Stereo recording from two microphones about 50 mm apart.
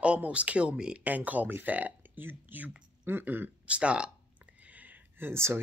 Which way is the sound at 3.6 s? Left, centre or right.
Right.